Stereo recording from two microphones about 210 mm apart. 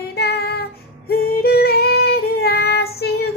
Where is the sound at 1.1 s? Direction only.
50° left (ahead or behind).